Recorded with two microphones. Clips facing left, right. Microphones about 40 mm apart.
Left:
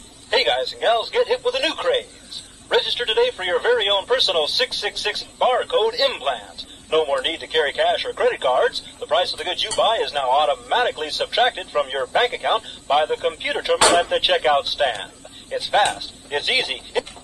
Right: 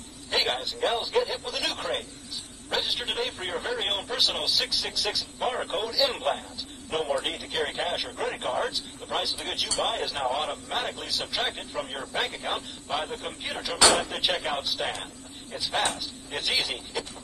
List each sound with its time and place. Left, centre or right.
0.3 s speech: left